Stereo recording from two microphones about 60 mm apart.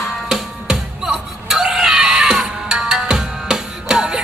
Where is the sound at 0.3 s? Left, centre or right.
Centre.